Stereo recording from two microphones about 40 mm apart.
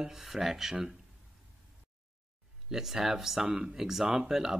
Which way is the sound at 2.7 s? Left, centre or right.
Centre.